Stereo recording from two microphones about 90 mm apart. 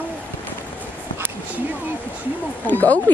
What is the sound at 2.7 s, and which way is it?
Speech, 20° left (ahead or behind).